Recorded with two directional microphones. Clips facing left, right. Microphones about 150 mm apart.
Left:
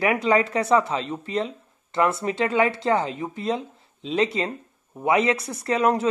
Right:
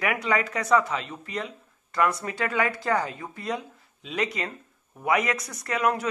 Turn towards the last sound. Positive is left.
turn(degrees=30)  # may be behind; listen again after turning